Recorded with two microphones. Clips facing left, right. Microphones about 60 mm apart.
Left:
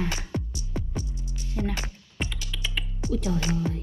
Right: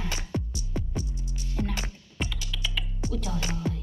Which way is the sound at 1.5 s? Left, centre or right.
Left.